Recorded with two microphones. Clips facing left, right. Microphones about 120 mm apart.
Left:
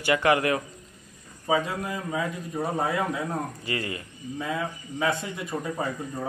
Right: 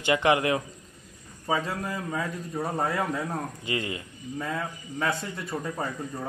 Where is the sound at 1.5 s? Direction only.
5° left (ahead or behind).